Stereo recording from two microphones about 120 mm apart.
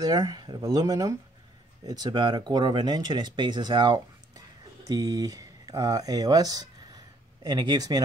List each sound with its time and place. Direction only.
0.0 s speech: 35° right (ahead or behind)